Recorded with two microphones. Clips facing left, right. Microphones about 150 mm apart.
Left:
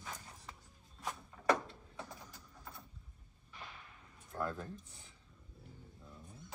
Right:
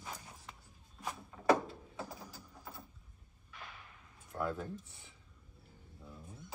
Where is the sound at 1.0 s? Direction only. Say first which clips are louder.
Right 3 dB; 5° right (ahead or behind).